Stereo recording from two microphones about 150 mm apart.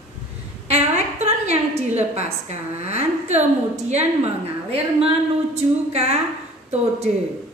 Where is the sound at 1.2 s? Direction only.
45° right (ahead or behind).